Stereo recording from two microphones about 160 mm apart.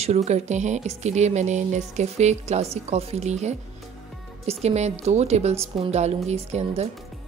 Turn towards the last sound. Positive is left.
turn(degrees=-40)  # may be behind; listen again after turning